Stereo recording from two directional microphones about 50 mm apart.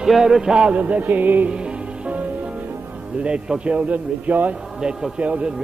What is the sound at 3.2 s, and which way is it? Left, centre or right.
A man's voice, right.